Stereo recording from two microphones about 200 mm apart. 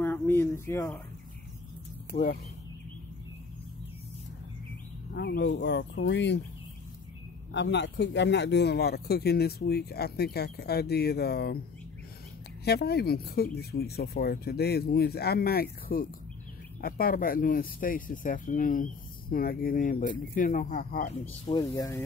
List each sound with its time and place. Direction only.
0.0 s a sound: 10° left (ahead or behind)
2.1 s speech: 35° left (ahead or behind)
5.1 s speech: 60° left (ahead or behind)
7.5 s speech: 60° left (ahead or behind)
12.6 s speech: 55° left (ahead or behind)
21.5 s speech: 20° left (ahead or behind)